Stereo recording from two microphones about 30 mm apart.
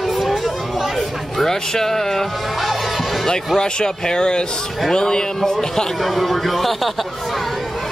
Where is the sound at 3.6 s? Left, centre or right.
Left.